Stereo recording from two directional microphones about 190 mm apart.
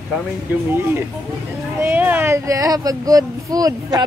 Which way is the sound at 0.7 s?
10° right (ahead or behind).